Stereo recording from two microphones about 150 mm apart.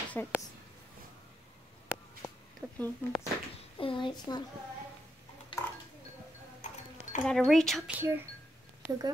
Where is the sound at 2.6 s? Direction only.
10° right (ahead or behind).